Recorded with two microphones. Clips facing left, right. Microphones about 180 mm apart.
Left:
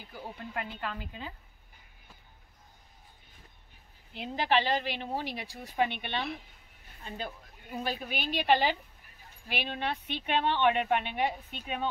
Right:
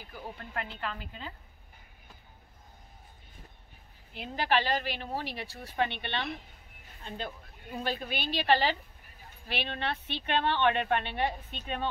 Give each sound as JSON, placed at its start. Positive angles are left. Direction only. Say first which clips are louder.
{"t": 0.1, "sound": "a woman's voice", "louder": "left 1 dB", "side_deg": 10}
{"t": 4.1, "sound": "a woman's voice", "louder": "left 1 dB", "side_deg": 20}